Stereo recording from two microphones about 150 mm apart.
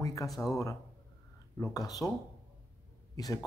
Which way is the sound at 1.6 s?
25° left (ahead or behind).